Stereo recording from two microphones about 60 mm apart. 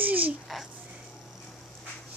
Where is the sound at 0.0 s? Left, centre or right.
Right.